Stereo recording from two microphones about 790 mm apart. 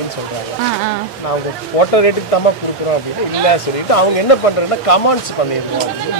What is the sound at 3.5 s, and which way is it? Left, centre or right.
Speech, left.